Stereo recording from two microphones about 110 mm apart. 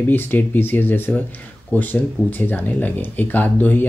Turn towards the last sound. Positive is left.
turn(degrees=15)  # may be behind; listen again after turning